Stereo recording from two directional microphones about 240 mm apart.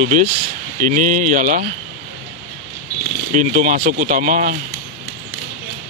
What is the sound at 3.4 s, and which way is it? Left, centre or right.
Speech, right.